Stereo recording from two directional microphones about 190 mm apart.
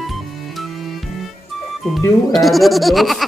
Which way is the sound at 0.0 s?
Centre (ahead or behind).